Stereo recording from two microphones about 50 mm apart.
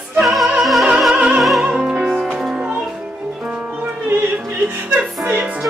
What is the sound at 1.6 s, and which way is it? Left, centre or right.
Music, centre.